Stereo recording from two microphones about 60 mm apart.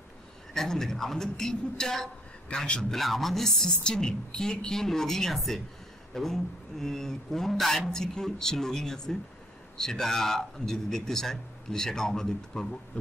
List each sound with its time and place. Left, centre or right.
0.6 s speech: centre
2.9 s speech: centre
12.9 s heart murmur: left